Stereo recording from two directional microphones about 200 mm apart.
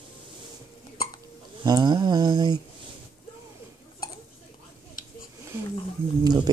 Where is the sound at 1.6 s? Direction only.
20° right (ahead or behind).